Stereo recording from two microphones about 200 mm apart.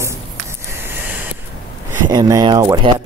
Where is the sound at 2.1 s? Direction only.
20° right (ahead or behind).